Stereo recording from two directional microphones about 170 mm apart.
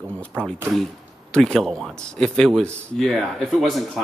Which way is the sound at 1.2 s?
5° left (ahead or behind).